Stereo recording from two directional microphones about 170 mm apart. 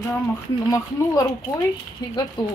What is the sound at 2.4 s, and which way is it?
Speech, 25° left (ahead or behind).